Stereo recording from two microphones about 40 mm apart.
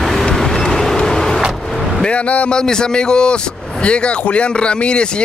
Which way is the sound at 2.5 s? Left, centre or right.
Centre.